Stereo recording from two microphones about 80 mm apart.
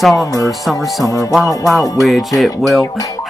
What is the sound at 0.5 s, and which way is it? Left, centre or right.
Speech, centre.